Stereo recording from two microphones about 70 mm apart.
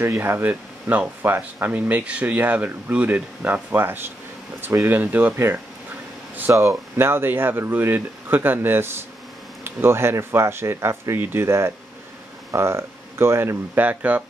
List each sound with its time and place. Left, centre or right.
0.0 s speech: right
6.5 s speech: right
13.7 s speech: right